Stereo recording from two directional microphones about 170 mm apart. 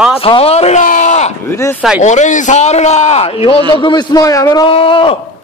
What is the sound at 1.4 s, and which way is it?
Speech, 15° left (ahead or behind).